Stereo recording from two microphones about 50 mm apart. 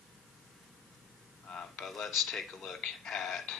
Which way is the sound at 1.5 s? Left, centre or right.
Centre.